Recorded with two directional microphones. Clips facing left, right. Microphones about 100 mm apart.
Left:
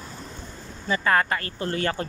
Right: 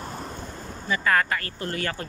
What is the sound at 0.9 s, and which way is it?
Speech, 30° left (ahead or behind).